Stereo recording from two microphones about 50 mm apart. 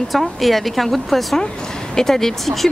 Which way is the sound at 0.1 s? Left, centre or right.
Centre.